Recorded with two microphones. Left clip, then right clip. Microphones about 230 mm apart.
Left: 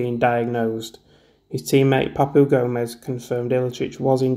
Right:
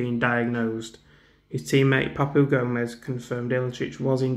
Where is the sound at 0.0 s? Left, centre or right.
Centre.